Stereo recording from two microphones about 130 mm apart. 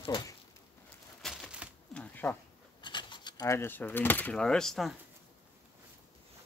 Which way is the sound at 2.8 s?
35° left (ahead or behind).